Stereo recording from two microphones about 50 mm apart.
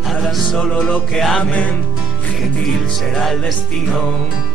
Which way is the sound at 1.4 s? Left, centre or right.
Left.